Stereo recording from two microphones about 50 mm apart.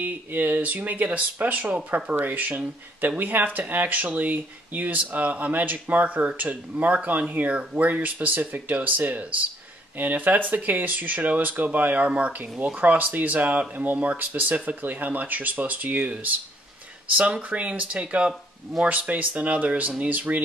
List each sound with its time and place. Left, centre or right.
0.0 s speech: right